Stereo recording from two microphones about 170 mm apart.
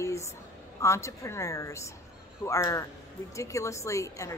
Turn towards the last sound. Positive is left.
turn(degrees=20)  # may be behind; listen again after turning